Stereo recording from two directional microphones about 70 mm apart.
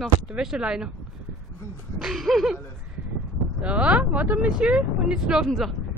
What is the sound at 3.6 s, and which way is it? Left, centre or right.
Speech, centre.